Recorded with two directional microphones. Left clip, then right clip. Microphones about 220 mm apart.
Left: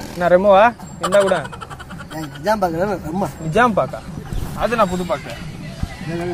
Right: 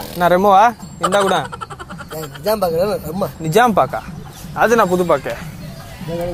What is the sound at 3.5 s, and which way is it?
Speech, 55° right (ahead or behind).